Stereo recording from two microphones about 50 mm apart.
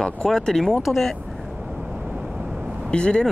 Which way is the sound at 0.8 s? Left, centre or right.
Centre.